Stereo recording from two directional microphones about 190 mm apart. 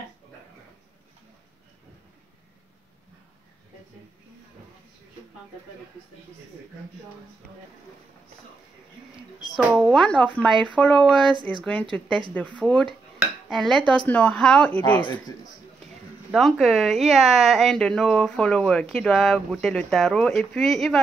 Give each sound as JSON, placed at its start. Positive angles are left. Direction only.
{"t": 9.6, "sound": "a woman's voice", "side_deg": -5}
{"t": 9.9, "sound": "speech", "side_deg": 5}
{"t": 11.1, "sound": "speech", "side_deg": -25}
{"t": 11.9, "sound": "speech", "side_deg": 10}
{"t": 15.0, "sound": "speech", "side_deg": 25}
{"t": 16.3, "sound": "speech", "side_deg": 0}